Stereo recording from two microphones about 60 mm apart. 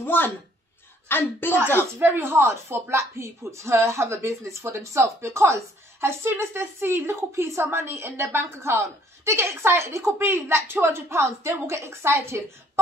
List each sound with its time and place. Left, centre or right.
0.0 s a sound: left
1.0 s a woman's voice: left
2.0 s speech: right